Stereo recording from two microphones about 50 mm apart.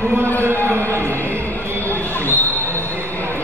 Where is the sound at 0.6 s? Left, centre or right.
Right.